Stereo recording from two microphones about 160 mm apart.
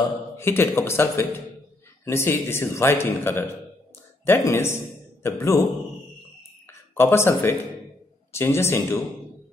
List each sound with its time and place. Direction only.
0.4 s a man's voice: 15° left (ahead or behind)
7.0 s a man's voice: 15° left (ahead or behind)